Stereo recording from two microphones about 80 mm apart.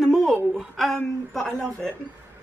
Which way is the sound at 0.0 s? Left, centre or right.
Centre.